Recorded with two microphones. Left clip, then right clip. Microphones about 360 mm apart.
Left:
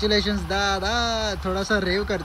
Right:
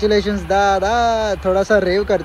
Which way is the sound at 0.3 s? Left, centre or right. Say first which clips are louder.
Right 8 dB; right.